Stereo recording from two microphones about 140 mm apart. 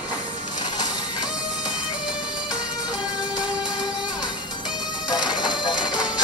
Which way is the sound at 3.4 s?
5° right (ahead or behind).